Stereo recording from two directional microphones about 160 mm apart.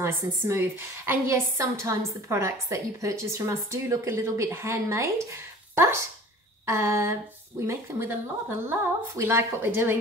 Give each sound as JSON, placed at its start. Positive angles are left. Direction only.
{"t": 0.0, "sound": "a woman's voice", "side_deg": -15}